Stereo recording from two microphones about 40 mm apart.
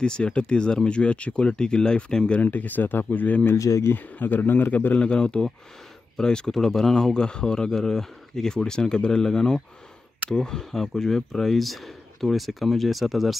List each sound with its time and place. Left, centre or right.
0.0 s speech: left
2.4 s speech: left
3.4 s a man's voice: left
4.9 s speech: left; by 7.2 s centre
7.2 s speech: left; by 13.4 s centre